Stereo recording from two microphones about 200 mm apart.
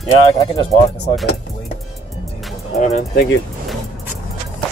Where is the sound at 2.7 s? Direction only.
35° left (ahead or behind).